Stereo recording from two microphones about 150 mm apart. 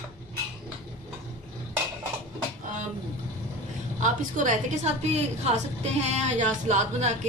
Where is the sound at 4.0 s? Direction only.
55° right (ahead or behind).